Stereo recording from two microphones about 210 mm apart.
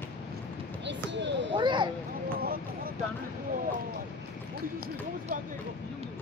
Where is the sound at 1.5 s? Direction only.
20° right (ahead or behind).